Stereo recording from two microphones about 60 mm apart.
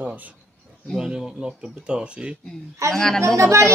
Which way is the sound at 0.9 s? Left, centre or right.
Centre.